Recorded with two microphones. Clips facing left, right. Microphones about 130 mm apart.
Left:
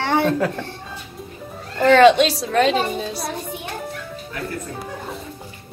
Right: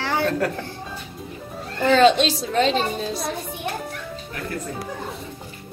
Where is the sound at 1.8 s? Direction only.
80° left.